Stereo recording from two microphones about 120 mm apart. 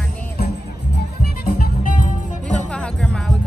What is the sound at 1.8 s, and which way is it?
Music, 90° left.